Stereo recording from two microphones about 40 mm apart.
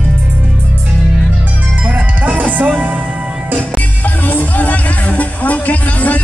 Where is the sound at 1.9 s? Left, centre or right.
Right.